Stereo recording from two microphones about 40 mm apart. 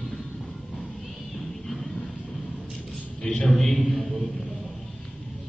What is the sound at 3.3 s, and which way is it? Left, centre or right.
Speech, centre.